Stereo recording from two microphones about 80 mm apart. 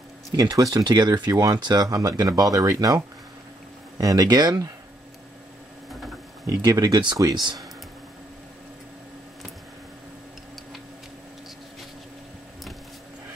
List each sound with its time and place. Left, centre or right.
0.4 s speech: right
1.3 s speech: right
1.6 s speech: right
4.0 s speech: right
6.5 s speech: right